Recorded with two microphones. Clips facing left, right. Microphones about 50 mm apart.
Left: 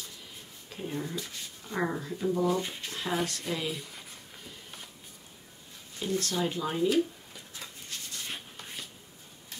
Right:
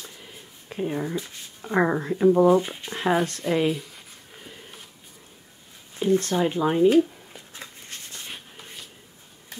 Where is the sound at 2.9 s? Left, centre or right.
Right.